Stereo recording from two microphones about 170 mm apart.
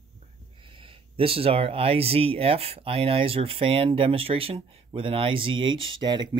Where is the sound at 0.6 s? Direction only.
30° right (ahead or behind).